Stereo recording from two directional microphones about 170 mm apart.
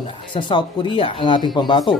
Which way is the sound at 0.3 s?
30° left (ahead or behind).